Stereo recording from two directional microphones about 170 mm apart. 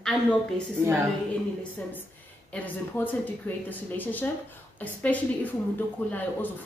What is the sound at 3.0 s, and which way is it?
A woman's voice, 10° left (ahead or behind).